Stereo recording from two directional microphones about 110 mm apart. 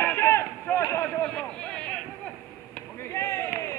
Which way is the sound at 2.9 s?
25° left (ahead or behind).